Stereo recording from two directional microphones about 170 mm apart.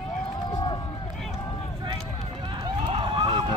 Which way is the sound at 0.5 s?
20° left (ahead or behind).